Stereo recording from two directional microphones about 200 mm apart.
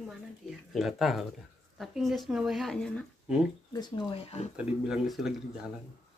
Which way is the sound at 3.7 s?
20° left (ahead or behind).